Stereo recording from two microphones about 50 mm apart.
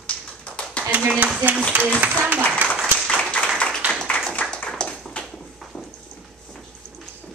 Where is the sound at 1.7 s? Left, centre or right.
Right.